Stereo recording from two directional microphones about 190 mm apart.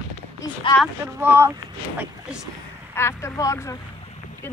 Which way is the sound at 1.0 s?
10° right (ahead or behind).